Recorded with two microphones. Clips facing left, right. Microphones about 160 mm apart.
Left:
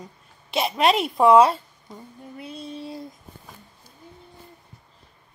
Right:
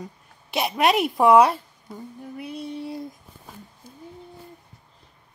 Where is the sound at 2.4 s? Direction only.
25° left (ahead or behind).